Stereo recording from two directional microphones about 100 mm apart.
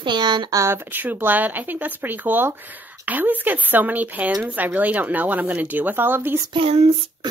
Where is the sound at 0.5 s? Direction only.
25° right (ahead or behind).